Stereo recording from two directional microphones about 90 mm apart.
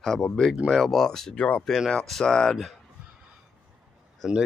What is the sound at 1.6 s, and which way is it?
Speech, centre (ahead or behind).